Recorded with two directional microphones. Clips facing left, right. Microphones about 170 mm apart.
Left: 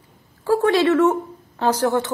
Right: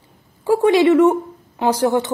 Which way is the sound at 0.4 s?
15° right (ahead or behind).